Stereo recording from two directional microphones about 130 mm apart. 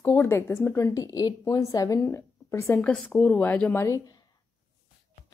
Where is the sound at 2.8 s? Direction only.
5° left (ahead or behind).